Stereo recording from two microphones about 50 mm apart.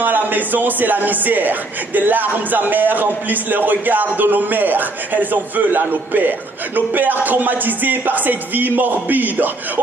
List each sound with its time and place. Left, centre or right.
0.0 s speech: right